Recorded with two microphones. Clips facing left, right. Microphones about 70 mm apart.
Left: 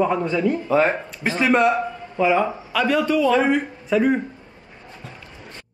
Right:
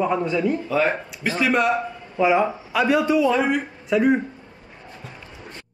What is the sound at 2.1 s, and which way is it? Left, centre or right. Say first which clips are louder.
A man's voice: even; centre.